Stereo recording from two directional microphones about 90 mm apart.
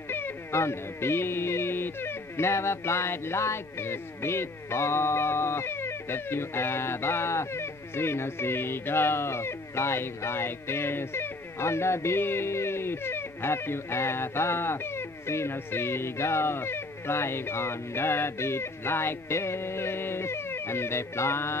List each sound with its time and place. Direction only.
0.1 s speech: 25° left (ahead or behind)